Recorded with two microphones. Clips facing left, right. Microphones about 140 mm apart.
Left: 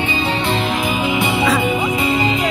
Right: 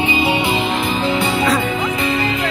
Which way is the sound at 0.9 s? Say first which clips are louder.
Even; 10° left (ahead or behind).